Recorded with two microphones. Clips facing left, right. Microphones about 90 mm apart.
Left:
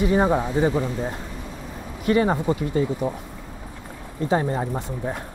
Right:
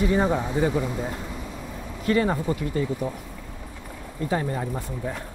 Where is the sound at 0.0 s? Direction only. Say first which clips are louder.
Left 3 dB; 25° left (ahead or behind).